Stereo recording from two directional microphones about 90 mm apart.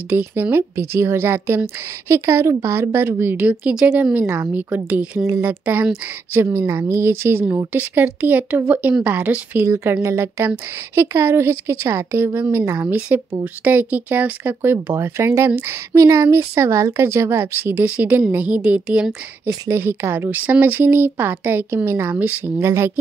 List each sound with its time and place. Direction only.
0.1 s speech: 25° right (ahead or behind)
6.3 s a woman's voice: 30° right (ahead or behind)
10.0 s a woman's voice: 35° right (ahead or behind); by 19.0 s 15° right (ahead or behind)
19.7 s speech: 30° right (ahead or behind)